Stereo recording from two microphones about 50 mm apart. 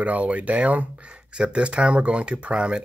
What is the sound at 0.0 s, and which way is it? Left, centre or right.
Speech, right.